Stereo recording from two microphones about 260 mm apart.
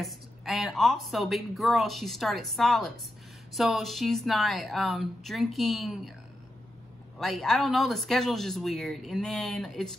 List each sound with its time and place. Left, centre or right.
0.0 s a woman's voice: centre
7.2 s a woman's voice: centre